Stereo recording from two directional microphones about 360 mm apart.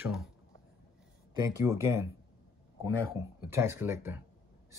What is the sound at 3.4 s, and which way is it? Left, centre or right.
Speech, centre.